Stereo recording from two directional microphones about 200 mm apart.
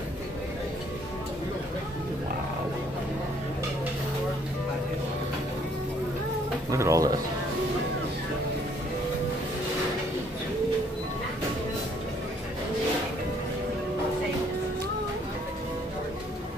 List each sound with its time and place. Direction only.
6.7 s music: 15° right (ahead or behind)